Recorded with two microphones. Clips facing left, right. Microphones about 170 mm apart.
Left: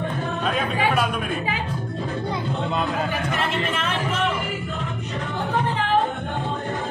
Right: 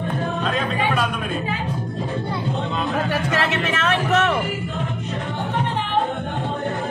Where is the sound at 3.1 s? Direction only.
80° right.